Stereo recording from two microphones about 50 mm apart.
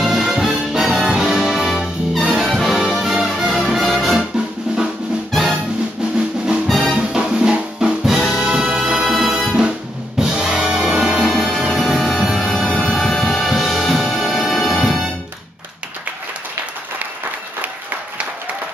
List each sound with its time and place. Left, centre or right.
0.0 s music: centre
4.7 s drum: centre
5.3 s music: centre
6.8 s music: centre
8.1 s music: centre
10.1 s music: centre
11.2 s music: centre
12.5 s music: centre
12.9 s music: centre